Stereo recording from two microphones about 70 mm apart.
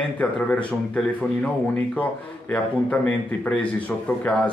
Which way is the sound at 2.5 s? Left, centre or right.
Centre.